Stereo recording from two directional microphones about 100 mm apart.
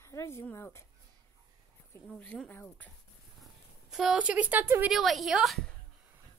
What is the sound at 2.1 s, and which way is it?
Speech, 15° left (ahead or behind).